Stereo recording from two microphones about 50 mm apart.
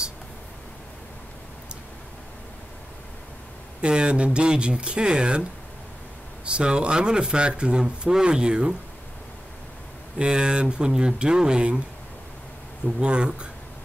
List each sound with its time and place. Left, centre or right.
3.8 s speech: right
6.4 s speech: right
10.1 s speech: centre
12.8 s speech: right